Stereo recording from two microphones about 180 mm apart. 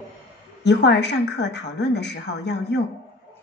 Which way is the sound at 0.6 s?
75° left (ahead or behind).